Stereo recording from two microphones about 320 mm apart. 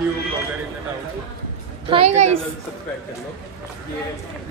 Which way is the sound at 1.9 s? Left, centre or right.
Centre.